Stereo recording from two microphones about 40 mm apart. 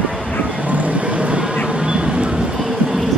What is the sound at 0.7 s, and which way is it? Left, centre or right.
Vehicle, right.